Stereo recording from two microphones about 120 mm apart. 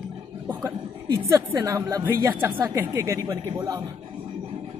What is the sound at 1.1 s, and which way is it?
A woman's voice, 25° right (ahead or behind).